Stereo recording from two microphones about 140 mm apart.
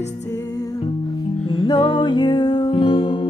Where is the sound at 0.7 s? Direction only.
35° left (ahead or behind).